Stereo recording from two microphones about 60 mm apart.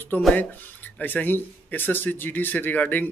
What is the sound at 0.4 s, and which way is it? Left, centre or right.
Speech, left.